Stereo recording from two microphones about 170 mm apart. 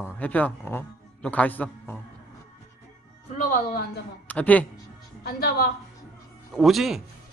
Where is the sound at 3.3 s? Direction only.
60° left (ahead or behind).